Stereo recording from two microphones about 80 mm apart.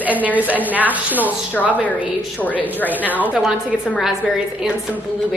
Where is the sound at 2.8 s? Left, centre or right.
Left.